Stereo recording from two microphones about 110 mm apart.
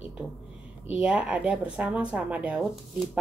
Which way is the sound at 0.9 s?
10° right (ahead or behind).